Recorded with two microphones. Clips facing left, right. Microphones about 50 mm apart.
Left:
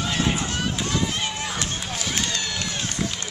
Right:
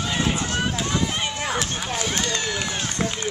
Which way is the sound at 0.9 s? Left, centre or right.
Right.